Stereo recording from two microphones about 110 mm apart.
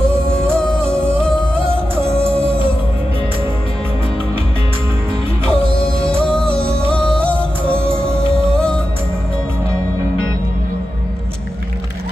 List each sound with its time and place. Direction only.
0.0 s music: 10° left (ahead or behind)
5.5 s music: 10° left (ahead or behind)